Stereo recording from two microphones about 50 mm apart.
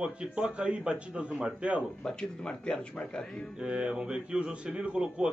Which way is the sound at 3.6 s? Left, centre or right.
Right.